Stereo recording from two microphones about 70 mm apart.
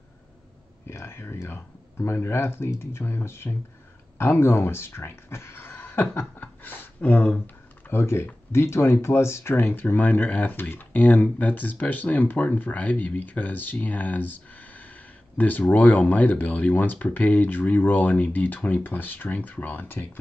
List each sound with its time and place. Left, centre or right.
0.8 s speech: left
7.9 s speech: left